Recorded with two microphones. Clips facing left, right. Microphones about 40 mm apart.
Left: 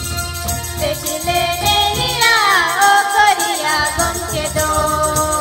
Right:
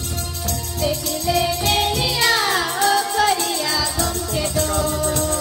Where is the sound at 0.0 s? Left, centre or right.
Left.